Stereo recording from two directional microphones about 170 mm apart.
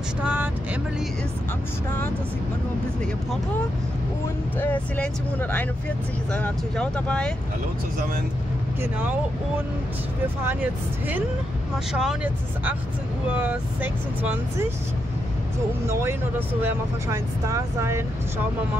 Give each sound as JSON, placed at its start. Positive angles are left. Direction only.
{"t": 0.2, "sound": "speech", "side_deg": -10}
{"t": 4.6, "sound": "speech", "side_deg": 10}
{"t": 10.4, "sound": "speech", "side_deg": -10}
{"t": 15.9, "sound": "speech", "side_deg": -15}